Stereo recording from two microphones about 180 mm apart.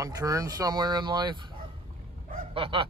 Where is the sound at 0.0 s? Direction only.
20° right (ahead or behind).